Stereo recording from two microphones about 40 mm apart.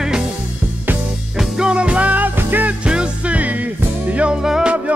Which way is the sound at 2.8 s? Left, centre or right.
Right.